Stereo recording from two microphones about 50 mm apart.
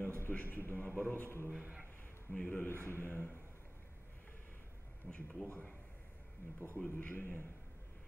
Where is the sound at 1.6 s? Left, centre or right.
Right.